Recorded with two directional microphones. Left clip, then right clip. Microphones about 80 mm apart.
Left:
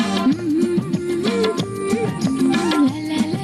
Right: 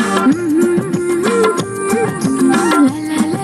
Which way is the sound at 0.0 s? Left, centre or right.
Right.